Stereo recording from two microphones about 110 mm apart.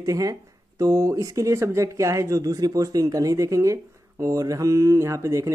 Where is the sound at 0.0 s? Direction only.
30° right (ahead or behind).